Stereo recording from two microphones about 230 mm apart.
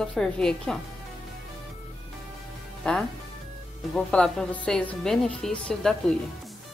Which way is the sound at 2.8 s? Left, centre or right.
Centre.